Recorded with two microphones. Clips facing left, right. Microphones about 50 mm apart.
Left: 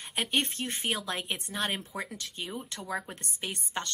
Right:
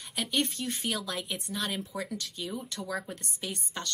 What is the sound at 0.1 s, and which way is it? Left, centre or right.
A woman's voice, left.